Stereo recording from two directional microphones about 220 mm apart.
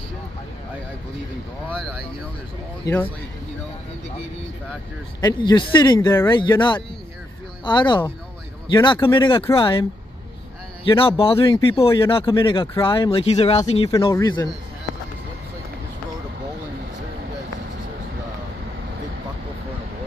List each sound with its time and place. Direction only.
1.7 s speech: centre (ahead or behind)
5.2 s speech: 20° left (ahead or behind)
13.8 s speech: 15° left (ahead or behind)